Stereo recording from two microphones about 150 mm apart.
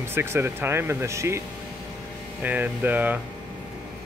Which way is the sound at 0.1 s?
15° right (ahead or behind).